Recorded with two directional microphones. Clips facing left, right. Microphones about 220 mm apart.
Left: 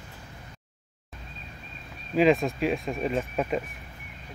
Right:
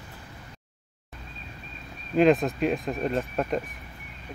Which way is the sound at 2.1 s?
Centre (ahead or behind).